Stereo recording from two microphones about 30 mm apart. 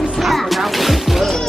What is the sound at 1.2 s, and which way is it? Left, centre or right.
Music, centre.